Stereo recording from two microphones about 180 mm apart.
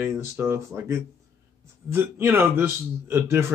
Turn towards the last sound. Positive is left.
turn(degrees=-15)  # may be behind; listen again after turning